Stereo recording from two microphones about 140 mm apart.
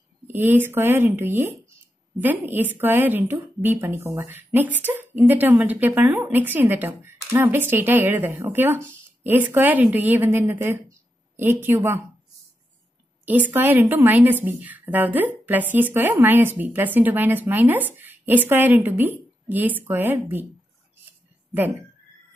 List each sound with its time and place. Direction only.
0.3 s a woman's voice: 15° right (ahead or behind)
13.2 s a woman's voice: 10° right (ahead or behind)